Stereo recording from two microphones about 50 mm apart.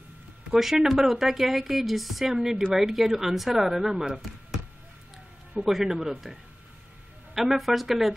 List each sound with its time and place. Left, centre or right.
0.5 s a woman's voice: centre
5.7 s a woman's voice: centre
7.3 s a woman's voice: centre